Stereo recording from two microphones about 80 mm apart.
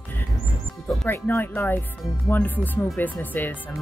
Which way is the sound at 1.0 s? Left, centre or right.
Left.